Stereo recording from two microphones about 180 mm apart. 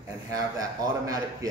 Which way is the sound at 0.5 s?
20° right (ahead or behind).